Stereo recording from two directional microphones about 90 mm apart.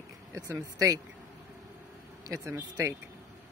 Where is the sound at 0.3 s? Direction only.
40° right (ahead or behind).